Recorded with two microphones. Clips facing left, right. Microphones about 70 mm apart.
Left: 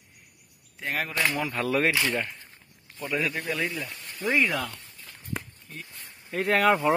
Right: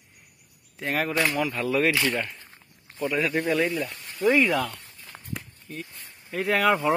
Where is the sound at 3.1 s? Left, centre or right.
Centre.